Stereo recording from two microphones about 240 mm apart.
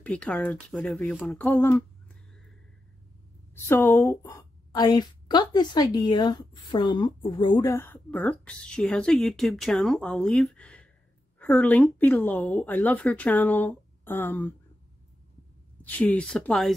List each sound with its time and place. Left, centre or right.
0.0 s a woman's voice: centre
3.6 s a woman's voice: centre
15.8 s a woman's voice: centre